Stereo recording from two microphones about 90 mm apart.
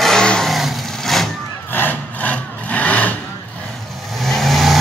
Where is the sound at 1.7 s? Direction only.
20° left (ahead or behind).